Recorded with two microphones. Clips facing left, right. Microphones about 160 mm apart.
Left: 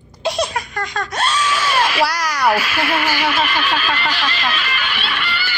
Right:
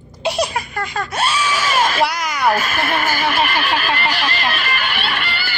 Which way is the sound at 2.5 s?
45° right (ahead or behind).